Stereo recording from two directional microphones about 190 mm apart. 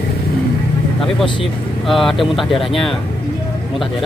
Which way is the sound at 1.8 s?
Centre (ahead or behind).